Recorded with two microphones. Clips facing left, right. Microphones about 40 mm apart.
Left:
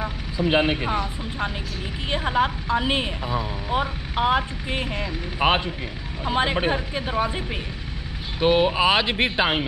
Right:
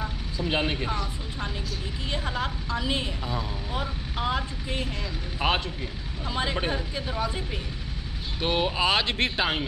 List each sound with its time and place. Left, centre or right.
0.0 s speech: left
8.4 s speech: centre